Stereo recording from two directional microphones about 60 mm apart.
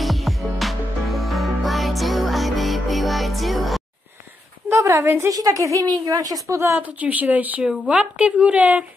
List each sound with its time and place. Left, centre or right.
0.0 s music: centre
4.6 s a sound: right
5.0 s a woman's voice: right
5.3 s a woman's voice: right
6.8 s a woman's voice: right
7.9 s a woman's voice: centre